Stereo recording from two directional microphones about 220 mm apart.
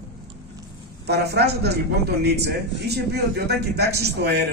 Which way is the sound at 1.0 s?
50° right (ahead or behind).